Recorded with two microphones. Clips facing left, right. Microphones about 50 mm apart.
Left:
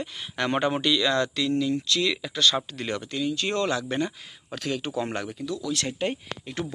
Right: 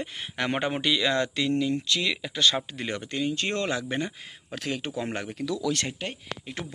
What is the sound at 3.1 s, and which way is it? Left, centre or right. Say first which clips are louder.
Speech: even; right.